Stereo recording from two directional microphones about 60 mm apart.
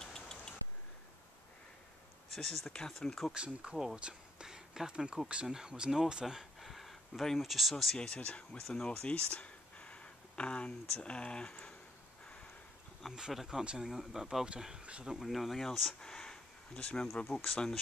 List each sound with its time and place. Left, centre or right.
0.0 s vehicle: centre
2.3 s speech: centre
3.3 s speech: centre
3.9 s a sound: centre
5.3 s speech: centre
8.1 s speech: centre
13.1 s speech: centre
15.0 s speech: centre
16.1 s a sound: centre
17.5 s speech: centre